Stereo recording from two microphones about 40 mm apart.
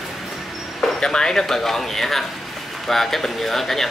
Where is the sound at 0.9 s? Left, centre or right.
Centre.